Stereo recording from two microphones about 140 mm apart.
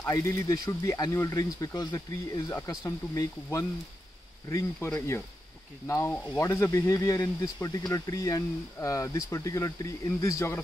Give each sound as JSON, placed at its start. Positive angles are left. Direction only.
{"t": 0.0, "sound": "speech", "side_deg": 25}